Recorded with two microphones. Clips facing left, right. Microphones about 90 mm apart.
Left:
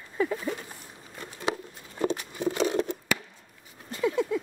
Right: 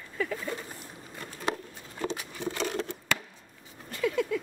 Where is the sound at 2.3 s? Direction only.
15° left (ahead or behind).